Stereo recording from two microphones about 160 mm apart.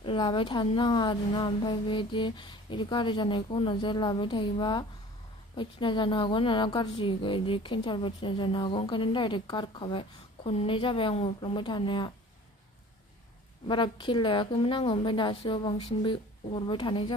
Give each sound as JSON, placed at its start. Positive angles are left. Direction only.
{"t": 0.0, "sound": "a woman's voice", "side_deg": 30}
{"t": 13.7, "sound": "a woman's voice", "side_deg": 30}